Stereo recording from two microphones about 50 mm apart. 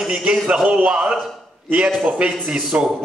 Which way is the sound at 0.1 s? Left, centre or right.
Centre.